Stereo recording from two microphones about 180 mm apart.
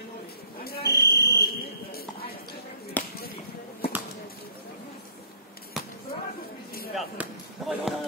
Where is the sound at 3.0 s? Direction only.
10° left (ahead or behind).